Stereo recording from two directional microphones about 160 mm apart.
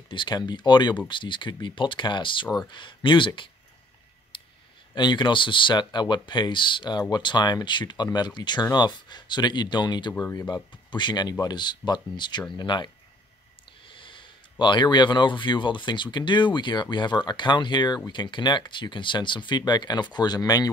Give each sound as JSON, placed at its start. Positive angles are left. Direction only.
{"t": 0.1, "sound": "speech", "side_deg": 30}
{"t": 4.3, "sound": "clicking", "side_deg": 30}
{"t": 4.9, "sound": "speech", "side_deg": 30}